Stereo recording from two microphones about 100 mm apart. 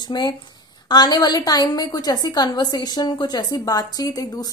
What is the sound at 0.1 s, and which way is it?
Speech, 45° left (ahead or behind).